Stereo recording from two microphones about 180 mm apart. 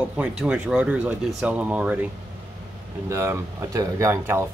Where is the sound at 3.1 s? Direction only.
15° right (ahead or behind).